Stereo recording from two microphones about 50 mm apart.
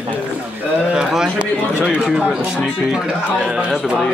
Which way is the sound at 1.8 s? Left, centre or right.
Right.